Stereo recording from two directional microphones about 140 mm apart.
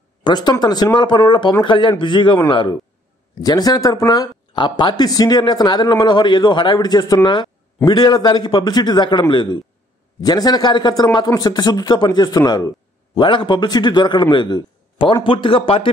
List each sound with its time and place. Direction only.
0.2 s speech: 30° left (ahead or behind)